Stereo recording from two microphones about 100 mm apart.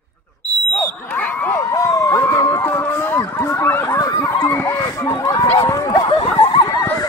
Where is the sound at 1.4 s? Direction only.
30° left (ahead or behind).